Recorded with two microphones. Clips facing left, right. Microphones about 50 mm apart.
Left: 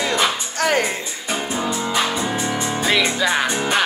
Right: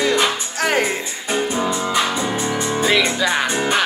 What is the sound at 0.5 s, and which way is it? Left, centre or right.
Speech, centre.